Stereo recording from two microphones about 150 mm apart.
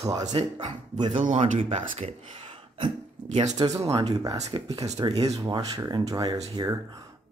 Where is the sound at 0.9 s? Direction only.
30° right (ahead or behind).